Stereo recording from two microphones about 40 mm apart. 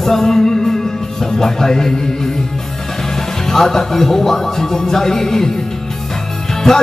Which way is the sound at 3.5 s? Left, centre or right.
Centre.